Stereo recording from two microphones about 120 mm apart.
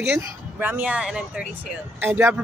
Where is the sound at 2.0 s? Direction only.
20° right (ahead or behind).